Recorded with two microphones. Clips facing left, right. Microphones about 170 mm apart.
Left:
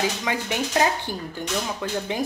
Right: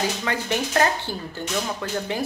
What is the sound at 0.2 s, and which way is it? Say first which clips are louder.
A woman's voice: right 1 dB; 10° left (ahead or behind).